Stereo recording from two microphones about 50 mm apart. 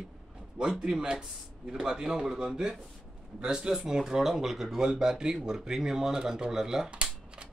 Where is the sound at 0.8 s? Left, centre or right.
Centre.